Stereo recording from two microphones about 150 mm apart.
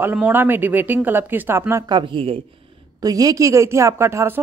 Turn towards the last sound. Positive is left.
turn(degrees=-15)  # may be behind; listen again after turning